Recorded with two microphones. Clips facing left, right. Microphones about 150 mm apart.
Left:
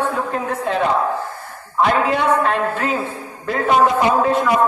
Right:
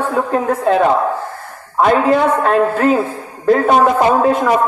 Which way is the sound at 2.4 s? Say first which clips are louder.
Right 6 dB; 45° right (ahead or behind).